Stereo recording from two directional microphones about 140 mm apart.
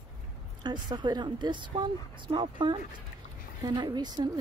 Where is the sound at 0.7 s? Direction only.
30° right (ahead or behind).